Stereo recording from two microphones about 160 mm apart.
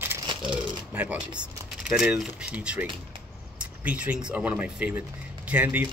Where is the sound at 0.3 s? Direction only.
30° right (ahead or behind).